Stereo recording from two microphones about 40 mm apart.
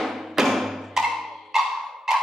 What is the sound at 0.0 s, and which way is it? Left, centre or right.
Music, centre.